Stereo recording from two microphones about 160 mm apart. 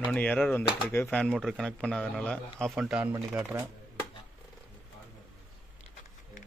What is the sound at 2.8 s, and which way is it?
Speech, 5° right (ahead or behind).